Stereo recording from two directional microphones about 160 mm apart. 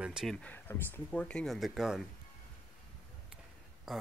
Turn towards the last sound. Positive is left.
turn(degrees=-5)  # may be behind; listen again after turning